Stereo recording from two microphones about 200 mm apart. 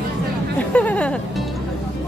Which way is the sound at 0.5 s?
5° left (ahead or behind).